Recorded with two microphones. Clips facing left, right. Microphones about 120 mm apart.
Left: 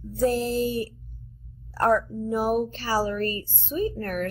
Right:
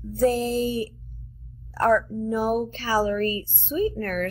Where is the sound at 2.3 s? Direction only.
5° left (ahead or behind).